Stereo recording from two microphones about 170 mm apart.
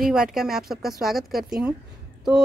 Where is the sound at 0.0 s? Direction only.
5° right (ahead or behind).